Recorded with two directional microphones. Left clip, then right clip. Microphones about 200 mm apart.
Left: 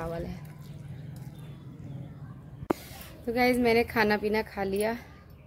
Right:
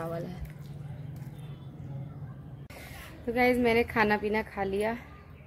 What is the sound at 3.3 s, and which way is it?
A woman's voice, 20° left (ahead or behind).